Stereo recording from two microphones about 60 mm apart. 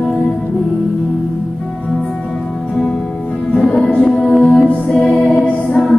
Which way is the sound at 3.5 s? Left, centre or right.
Centre.